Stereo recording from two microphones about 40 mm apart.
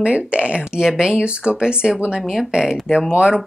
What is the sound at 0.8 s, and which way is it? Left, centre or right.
Speech, centre.